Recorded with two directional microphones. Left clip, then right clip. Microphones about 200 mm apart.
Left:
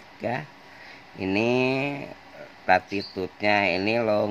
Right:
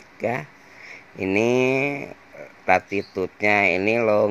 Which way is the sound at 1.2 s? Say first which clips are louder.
Right 4 dB; 20° right (ahead or behind).